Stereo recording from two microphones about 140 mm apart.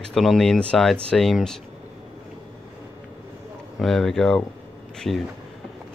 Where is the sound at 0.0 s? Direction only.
Centre (ahead or behind).